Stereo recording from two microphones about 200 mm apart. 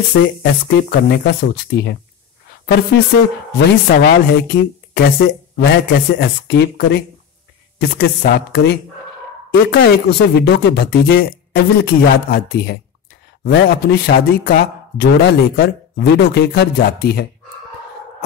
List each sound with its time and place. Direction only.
0.1 s speech: 55° left (ahead or behind)